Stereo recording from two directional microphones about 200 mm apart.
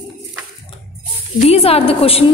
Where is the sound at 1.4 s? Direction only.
30° left (ahead or behind).